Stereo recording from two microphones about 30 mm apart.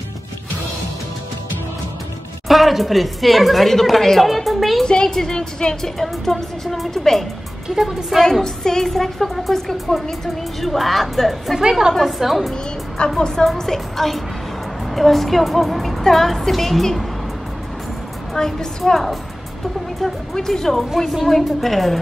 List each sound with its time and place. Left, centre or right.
2.4 s a woman's voice: centre
4.2 s a sound: centre
4.8 s a woman's voice: left; by 7.2 s centre
7.7 s a woman's voice: centre
8.2 s a woman's voice: centre
13.2 s a woman's voice: centre
18.3 s a woman's voice: left
18.9 s a woman's voice: centre
20.3 s a woman's voice: centre